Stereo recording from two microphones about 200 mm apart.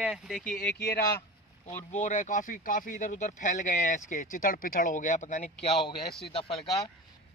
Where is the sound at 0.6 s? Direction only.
55° left (ahead or behind).